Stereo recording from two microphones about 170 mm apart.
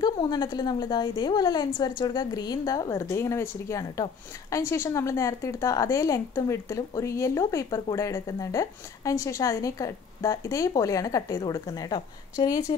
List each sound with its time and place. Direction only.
0.0 s a woman's voice: 25° left (ahead or behind)